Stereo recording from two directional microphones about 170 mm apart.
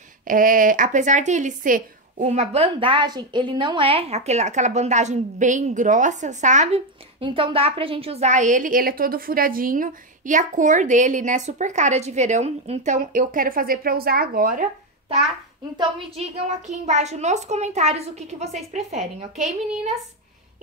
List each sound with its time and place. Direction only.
0.3 s a woman's voice: 55° right (ahead or behind)
7.2 s a woman's voice: 30° right (ahead or behind); by 14.6 s 60° right (ahead or behind)
16.0 s a child's voice: 40° right (ahead or behind)